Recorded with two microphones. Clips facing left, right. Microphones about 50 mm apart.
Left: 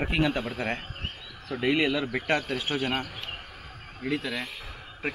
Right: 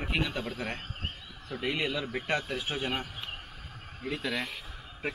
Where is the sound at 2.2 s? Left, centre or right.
Left.